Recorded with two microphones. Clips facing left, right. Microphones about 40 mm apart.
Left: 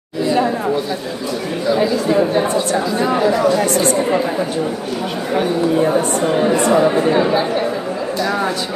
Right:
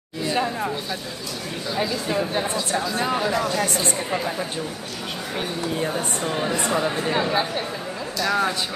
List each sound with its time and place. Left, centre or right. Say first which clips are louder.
1.7 s speech: left 9 dB; centre
5.9 s speech: left 10 dB; left